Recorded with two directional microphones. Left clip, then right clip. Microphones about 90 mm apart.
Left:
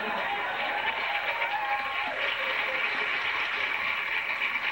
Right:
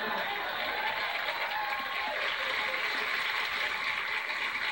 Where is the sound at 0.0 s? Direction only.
35° right (ahead or behind).